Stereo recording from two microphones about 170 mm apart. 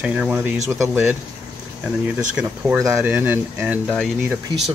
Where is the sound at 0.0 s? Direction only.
10° right (ahead or behind).